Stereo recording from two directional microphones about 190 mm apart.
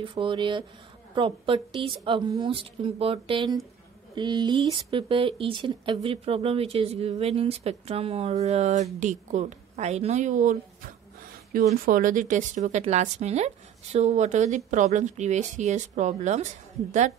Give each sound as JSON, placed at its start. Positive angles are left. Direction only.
{"t": 0.0, "sound": "speech", "side_deg": -25}